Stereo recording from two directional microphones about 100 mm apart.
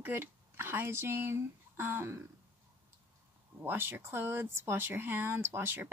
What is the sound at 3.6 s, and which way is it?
Speech, 20° right (ahead or behind).